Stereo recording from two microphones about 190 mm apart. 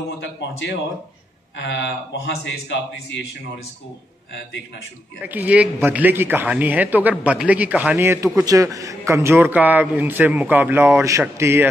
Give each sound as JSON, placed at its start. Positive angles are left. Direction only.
{"t": 0.2, "sound": "a man's voice", "side_deg": 70}
{"t": 5.2, "sound": "a man's voice", "side_deg": -10}